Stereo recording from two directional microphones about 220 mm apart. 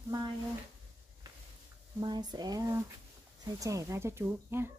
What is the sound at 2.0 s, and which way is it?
Speech, 20° right (ahead or behind).